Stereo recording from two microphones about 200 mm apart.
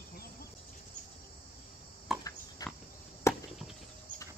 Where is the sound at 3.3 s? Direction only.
15° left (ahead or behind).